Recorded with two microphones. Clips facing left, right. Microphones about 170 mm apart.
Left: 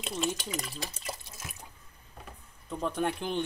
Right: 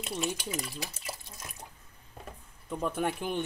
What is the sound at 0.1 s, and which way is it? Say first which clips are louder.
Speech: left 1 dB; 10° right (ahead or behind).